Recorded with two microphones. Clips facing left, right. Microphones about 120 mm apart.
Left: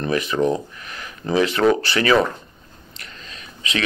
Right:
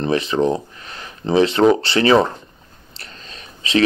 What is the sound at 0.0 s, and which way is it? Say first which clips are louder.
Speech: right 2 dB; 30° right (ahead or behind).